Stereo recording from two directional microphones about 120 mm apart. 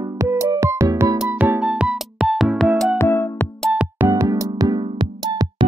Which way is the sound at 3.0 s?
20° left (ahead or behind).